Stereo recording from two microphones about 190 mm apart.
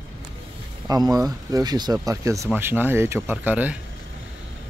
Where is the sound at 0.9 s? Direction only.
20° right (ahead or behind).